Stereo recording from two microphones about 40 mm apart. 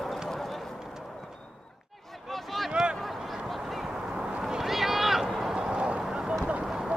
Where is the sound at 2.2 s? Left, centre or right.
Centre.